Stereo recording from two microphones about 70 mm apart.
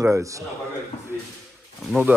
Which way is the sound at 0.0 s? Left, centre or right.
Right.